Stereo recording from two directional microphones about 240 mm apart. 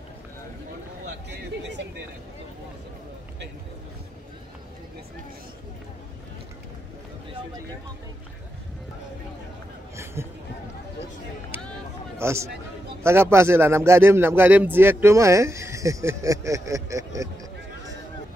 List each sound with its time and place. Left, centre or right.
1.0 s speech: right
10.2 s a man's voice: centre
12.2 s a man's voice: centre